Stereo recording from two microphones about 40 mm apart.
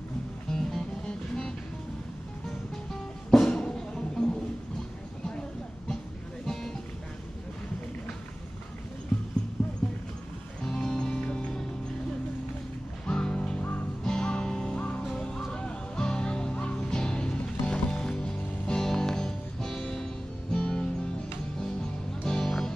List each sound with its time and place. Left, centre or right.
0.5 s music: centre
3.3 s music: centre
6.4 s music: centre
9.6 s clip-clop: centre
10.6 s music: centre
13.0 s music: centre
22.2 s music: centre